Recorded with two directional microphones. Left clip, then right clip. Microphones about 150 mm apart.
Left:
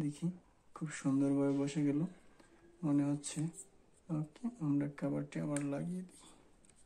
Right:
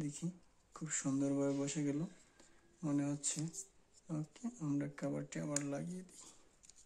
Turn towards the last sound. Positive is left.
turn(degrees=-15)  # may be behind; listen again after turning